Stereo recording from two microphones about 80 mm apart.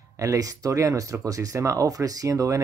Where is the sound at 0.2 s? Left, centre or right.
Right.